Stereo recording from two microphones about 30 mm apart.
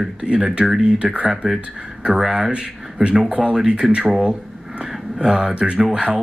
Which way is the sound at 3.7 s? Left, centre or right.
Right.